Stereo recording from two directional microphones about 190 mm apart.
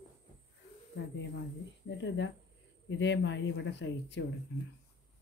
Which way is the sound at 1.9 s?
75° left (ahead or behind).